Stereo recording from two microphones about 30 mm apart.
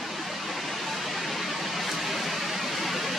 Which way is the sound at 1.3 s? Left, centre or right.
Centre.